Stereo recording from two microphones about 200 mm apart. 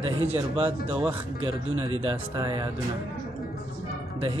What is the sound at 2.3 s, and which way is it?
Speech, 20° right (ahead or behind).